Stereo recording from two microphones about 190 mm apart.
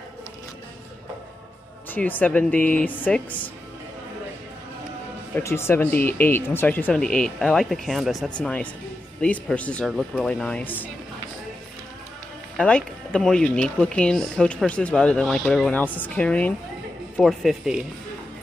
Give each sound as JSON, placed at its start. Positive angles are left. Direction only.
{"t": 1.9, "sound": "speech", "side_deg": 10}
{"t": 5.3, "sound": "speech", "side_deg": 15}
{"t": 12.5, "sound": "speech", "side_deg": 5}